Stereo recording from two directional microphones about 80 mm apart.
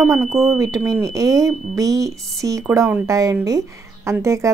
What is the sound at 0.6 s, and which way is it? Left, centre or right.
Speech, right.